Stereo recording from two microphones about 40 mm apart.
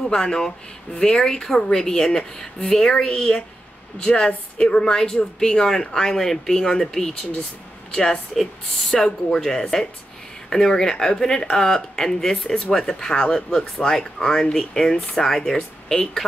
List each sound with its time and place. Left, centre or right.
0.0 s speech: centre
8.4 s speech: centre
8.9 s speech: centre